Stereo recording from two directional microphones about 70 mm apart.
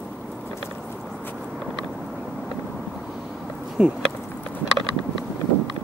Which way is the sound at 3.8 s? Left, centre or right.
Centre.